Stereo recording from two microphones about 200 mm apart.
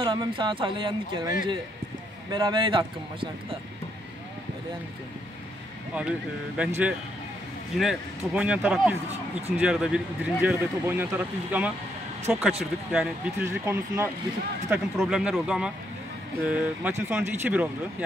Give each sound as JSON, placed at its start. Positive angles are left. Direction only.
{"t": 0.0, "sound": "speech", "side_deg": -25}
{"t": 2.3, "sound": "speech", "side_deg": -25}
{"t": 5.9, "sound": "speech", "side_deg": -5}
{"t": 7.7, "sound": "speech", "side_deg": 0}